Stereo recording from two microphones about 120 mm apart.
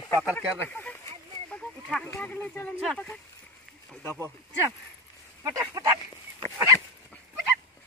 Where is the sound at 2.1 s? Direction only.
10° left (ahead or behind).